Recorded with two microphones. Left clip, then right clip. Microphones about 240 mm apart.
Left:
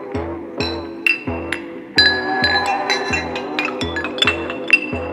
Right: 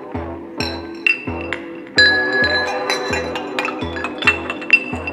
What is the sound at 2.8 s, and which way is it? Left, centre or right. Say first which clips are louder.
Music: left 1 dB; right.